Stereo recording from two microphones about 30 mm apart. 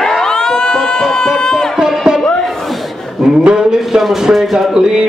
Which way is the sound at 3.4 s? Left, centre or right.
Right.